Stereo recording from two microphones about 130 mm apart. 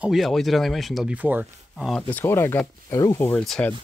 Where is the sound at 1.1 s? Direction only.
15° right (ahead or behind).